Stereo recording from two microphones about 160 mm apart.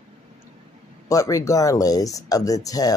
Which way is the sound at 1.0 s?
20° left (ahead or behind).